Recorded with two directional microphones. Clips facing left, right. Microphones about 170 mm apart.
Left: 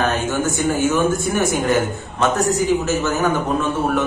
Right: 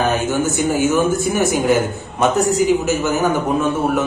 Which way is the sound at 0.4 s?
10° right (ahead or behind).